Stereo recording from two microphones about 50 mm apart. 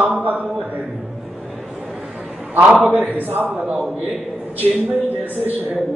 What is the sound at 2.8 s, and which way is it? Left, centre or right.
Speech, right.